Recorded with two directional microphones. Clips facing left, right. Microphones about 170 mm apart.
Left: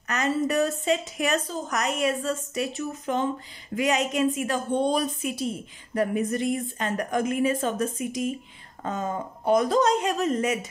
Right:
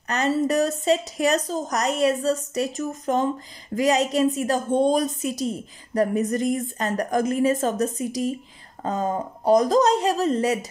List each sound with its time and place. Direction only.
0.1 s a woman's voice: 35° right (ahead or behind)